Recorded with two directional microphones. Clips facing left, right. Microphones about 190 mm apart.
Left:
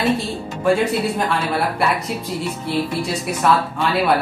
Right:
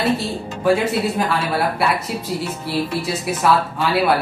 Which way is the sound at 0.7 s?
Centre (ahead or behind).